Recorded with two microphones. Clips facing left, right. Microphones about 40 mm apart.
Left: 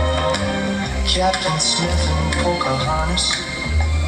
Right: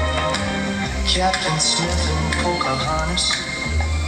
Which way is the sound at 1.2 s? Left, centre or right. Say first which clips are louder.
Left 1 dB; centre.